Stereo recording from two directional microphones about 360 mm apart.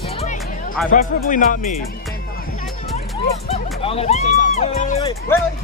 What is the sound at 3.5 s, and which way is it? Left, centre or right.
Speech, centre.